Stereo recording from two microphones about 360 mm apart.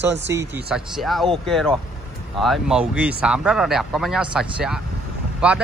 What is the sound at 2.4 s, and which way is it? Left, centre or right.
Speech, centre.